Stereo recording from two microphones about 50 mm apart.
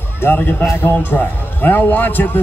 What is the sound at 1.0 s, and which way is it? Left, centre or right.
A man's voice, left.